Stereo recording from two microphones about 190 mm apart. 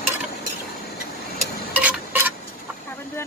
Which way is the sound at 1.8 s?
10° right (ahead or behind).